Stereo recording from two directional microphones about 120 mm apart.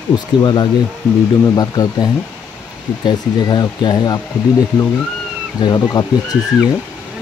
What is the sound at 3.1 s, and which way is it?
Speech, 35° left (ahead or behind).